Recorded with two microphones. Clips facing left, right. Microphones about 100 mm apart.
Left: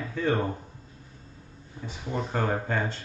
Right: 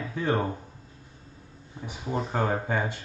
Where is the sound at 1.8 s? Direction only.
15° right (ahead or behind).